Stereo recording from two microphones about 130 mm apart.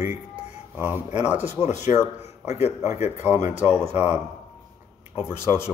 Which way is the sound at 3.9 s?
60° left (ahead or behind).